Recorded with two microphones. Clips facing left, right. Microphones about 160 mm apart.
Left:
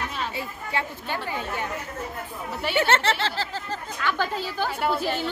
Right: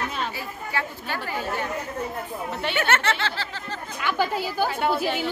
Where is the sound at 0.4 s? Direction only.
20° left (ahead or behind).